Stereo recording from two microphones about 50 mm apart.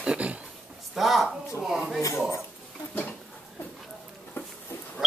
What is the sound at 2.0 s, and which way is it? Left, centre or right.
Speech, left.